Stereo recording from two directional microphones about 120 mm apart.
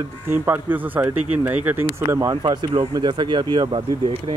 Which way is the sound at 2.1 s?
30° right (ahead or behind).